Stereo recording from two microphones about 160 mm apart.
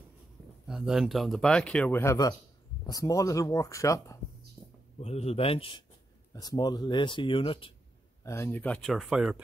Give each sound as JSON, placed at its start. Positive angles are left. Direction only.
{"t": 0.7, "sound": "speech", "side_deg": -5}
{"t": 5.0, "sound": "speech", "side_deg": 40}
{"t": 6.3, "sound": "speech", "side_deg": 25}
{"t": 8.2, "sound": "speech", "side_deg": 15}